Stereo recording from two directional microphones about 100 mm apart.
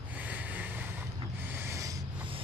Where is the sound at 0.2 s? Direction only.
15° right (ahead or behind); by 2.0 s 30° right (ahead or behind).